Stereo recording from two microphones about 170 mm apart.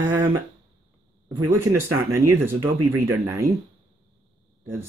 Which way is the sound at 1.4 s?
15° right (ahead or behind).